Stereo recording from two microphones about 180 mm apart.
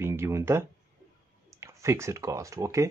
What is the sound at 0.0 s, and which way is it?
Speech, 15° right (ahead or behind).